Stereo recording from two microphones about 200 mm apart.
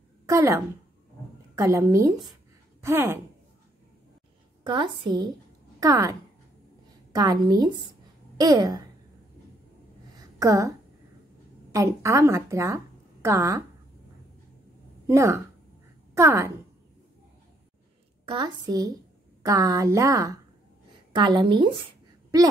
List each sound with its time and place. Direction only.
0.3 s a woman's voice: 15° right (ahead or behind)
4.6 s a woman's voice: 25° right (ahead or behind)
10.4 s a woman's voice: 15° right (ahead or behind)
11.7 s speech: 15° right (ahead or behind)
15.0 s a woman's voice: 15° right (ahead or behind)
18.2 s a woman's voice: 20° right (ahead or behind)